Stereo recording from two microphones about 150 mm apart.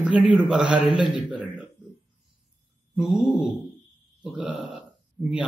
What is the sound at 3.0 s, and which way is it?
Speech, 5° right (ahead or behind).